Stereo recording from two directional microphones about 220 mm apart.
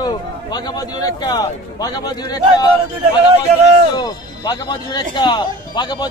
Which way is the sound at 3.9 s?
20° left (ahead or behind).